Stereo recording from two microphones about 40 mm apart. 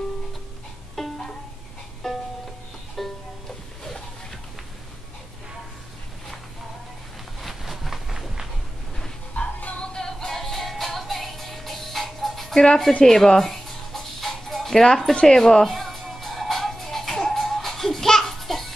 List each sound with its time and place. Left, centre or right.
1.0 s music: centre
7.3 s a sound: centre
9.3 s music: left
9.8 s music: centre
12.5 s speech: centre
13.0 s music: centre